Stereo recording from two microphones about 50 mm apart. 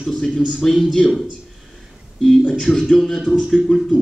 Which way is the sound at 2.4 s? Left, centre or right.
Centre.